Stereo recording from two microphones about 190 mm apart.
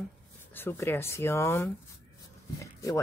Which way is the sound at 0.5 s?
10° left (ahead or behind).